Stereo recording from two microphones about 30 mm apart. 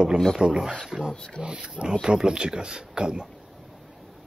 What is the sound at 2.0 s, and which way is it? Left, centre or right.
Speech, right.